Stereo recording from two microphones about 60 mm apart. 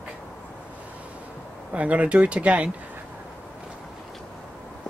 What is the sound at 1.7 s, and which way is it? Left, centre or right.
Speech, right.